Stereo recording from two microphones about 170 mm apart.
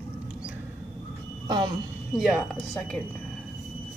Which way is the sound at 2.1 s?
Centre (ahead or behind).